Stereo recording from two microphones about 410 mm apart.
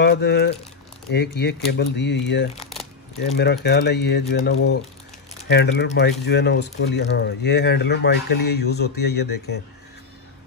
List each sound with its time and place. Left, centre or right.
0.0 s speech: left